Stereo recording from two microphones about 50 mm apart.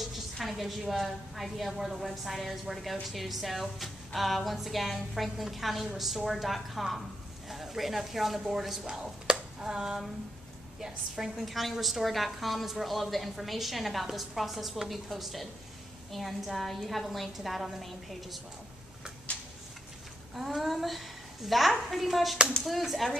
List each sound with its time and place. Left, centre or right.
0.0 s a woman's voice: centre
19.3 s a sound: left
20.3 s a woman's voice: centre